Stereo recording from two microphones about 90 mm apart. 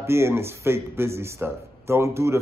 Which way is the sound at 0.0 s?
30° right (ahead or behind).